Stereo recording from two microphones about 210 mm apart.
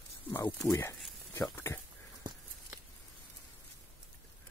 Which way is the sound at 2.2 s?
20° right (ahead or behind).